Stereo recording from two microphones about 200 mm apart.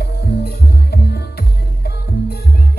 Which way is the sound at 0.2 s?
55° left (ahead or behind).